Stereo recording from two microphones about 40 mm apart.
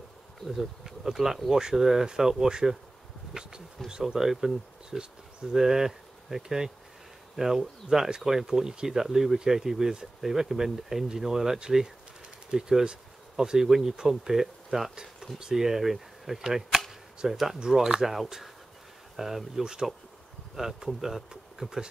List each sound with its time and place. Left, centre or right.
0.5 s speech: centre
19.6 s speech: centre